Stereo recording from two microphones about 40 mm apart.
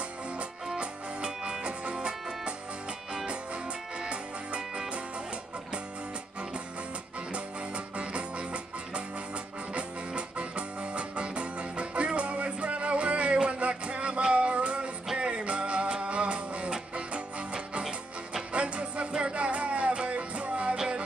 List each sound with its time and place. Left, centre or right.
0.7 s music: right
4.0 s music: right
7.3 s music: right
9.8 s music: right